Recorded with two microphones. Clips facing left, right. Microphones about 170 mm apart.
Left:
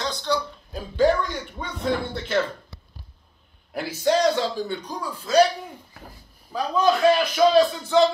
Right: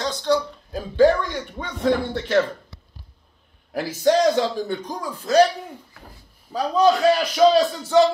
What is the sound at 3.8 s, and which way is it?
Speech, 45° right (ahead or behind).